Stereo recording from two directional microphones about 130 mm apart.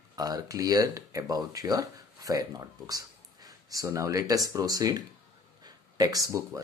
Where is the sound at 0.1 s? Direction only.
30° right (ahead or behind).